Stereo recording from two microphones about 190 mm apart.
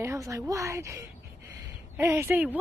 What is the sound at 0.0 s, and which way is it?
A woman's voice, 15° right (ahead or behind).